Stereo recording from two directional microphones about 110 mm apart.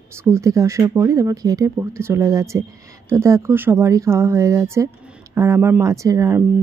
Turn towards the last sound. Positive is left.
turn(degrees=-30)  # may be behind; listen again after turning